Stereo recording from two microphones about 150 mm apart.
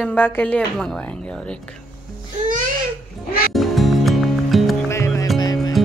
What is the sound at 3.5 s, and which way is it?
Music, centre (ahead or behind).